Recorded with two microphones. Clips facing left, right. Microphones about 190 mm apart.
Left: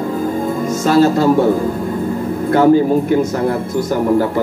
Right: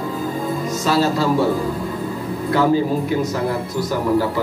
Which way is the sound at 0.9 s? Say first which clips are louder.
Left 7 dB; 50° left (ahead or behind).